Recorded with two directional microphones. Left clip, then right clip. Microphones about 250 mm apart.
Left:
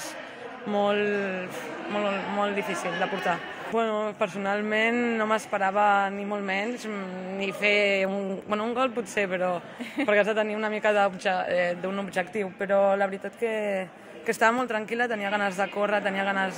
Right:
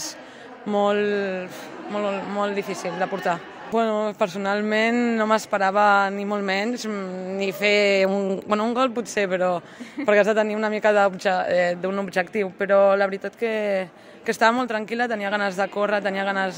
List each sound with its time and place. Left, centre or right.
0.7 s a man's voice: right